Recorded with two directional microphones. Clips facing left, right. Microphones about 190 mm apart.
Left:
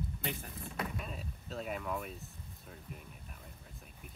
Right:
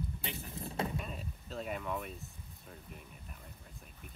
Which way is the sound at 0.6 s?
25° right (ahead or behind).